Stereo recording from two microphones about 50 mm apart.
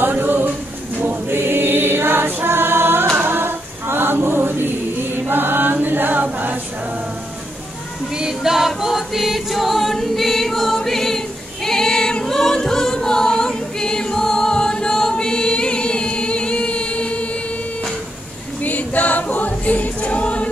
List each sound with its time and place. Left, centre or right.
0.0 s a sound: right
1.3 s choir: right
3.2 s a capella: right
6.3 s choir: right
8.2 s choir: centre; by 17.3 s left
18.6 s choir: left